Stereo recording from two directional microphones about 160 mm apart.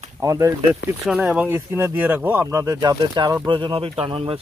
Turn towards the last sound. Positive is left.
turn(degrees=-35)  # may be behind; listen again after turning